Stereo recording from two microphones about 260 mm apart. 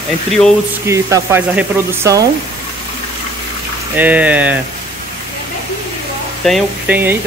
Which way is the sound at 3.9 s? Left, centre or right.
Centre.